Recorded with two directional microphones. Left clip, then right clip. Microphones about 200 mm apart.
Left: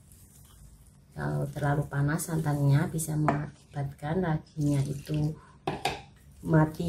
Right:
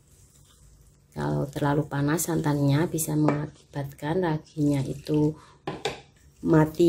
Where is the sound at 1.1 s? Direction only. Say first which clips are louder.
Right 5 dB; 45° right (ahead or behind).